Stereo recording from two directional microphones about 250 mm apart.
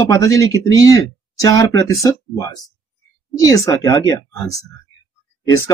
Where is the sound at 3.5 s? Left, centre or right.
Centre.